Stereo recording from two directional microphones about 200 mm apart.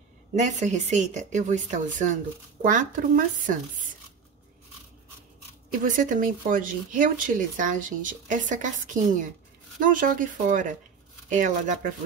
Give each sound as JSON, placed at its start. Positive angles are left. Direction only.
{"t": 0.4, "sound": "speech", "side_deg": -35}
{"t": 5.9, "sound": "speech", "side_deg": -40}